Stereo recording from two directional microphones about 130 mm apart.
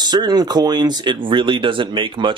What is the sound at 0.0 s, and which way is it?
Speech, 35° right (ahead or behind).